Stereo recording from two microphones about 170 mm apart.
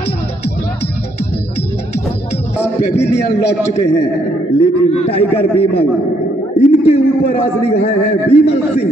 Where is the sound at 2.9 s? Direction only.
80° left.